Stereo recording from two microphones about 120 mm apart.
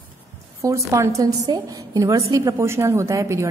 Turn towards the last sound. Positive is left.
turn(degrees=-25)  # may be behind; listen again after turning